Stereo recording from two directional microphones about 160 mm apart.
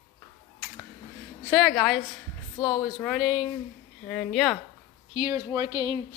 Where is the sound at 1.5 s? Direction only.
Centre (ahead or behind).